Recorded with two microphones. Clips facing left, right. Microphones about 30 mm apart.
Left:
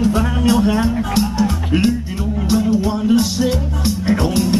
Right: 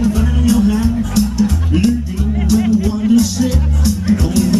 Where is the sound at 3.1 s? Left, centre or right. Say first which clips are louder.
Right 3 dB; left.